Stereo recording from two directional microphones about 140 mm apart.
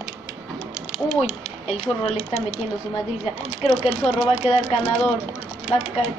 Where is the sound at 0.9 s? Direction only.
50° left (ahead or behind).